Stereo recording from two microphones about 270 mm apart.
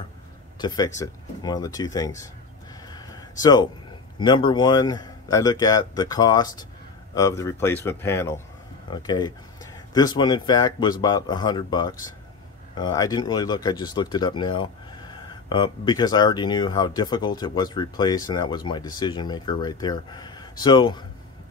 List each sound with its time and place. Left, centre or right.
0.6 s speech: centre
2.9 s a sound: centre
4.2 s speech: centre